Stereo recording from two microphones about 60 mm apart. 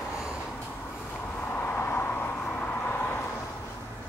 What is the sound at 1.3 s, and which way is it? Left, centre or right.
Vehicle, left.